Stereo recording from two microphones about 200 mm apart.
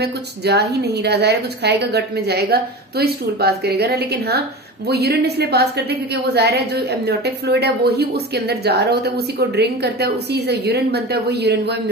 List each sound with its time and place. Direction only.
0.0 s a woman's voice: 55° right (ahead or behind)